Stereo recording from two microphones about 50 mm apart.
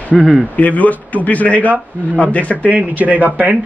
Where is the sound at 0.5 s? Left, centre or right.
Left.